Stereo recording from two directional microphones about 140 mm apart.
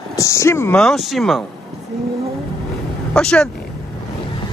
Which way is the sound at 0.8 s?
Centre (ahead or behind).